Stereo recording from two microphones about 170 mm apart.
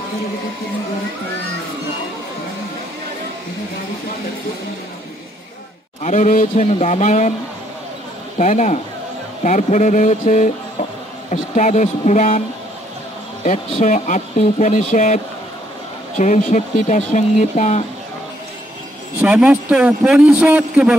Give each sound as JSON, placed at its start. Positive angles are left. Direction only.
{"t": 6.0, "sound": "speech", "side_deg": 45}
{"t": 8.4, "sound": "speech", "side_deg": 45}
{"t": 9.4, "sound": "a sound", "side_deg": 45}
{"t": 13.4, "sound": "speech", "side_deg": 40}
{"t": 16.2, "sound": "speech", "side_deg": 45}
{"t": 19.2, "sound": "a man's voice", "side_deg": -10}